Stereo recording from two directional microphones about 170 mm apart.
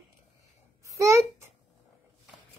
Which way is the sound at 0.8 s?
15° right (ahead or behind).